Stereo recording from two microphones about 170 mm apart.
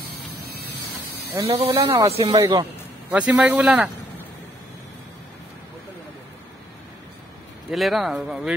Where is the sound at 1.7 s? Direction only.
15° right (ahead or behind).